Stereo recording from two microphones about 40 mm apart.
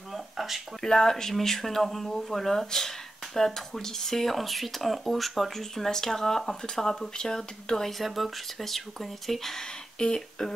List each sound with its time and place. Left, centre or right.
0.1 s a sound: centre
0.8 s speech: centre
8.0 s speech: centre
9.9 s speech: centre